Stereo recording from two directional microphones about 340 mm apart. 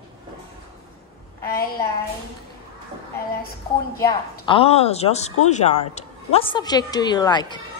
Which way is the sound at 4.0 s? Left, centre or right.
Centre.